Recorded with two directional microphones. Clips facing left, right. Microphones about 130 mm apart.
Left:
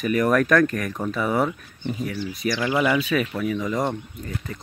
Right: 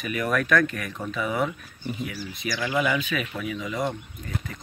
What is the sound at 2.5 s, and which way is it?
Speech, 30° left (ahead or behind).